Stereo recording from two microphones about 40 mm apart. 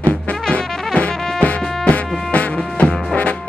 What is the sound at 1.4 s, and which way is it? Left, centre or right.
Music, left.